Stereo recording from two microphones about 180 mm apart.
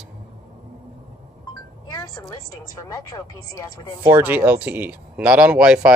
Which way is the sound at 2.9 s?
20° left (ahead or behind).